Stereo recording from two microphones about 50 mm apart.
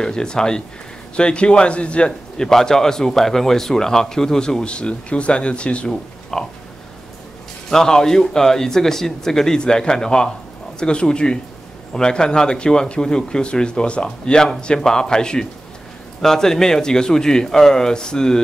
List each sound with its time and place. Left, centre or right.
0.0 s speech: centre
6.3 s speech: centre
7.7 s speech: centre